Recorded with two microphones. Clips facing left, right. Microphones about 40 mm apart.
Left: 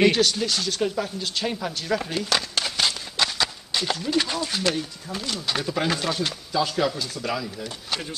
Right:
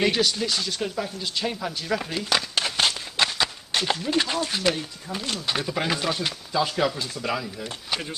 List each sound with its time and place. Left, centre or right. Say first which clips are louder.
0.0 s speech: left 3 dB; centre
2.6 s a sound: right 1 dB; right
3.8 s speech: even; centre